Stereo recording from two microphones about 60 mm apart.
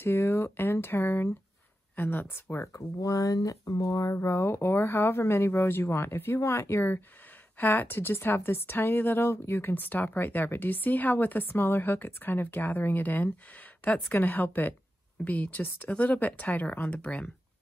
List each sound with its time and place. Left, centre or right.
0.0 s speech: left
2.0 s speech: left
2.6 s speech: left
4.5 s speech: left
7.5 s speech: left